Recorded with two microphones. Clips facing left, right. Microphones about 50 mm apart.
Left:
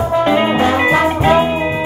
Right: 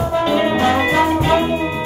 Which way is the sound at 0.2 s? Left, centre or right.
Left.